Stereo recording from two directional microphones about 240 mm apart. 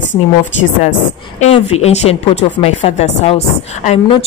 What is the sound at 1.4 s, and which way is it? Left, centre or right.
A woman's voice, left.